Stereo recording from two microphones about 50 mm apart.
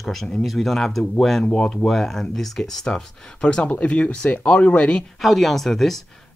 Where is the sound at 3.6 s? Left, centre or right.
Left.